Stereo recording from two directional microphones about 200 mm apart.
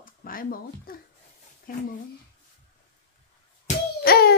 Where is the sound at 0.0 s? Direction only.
45° left (ahead or behind).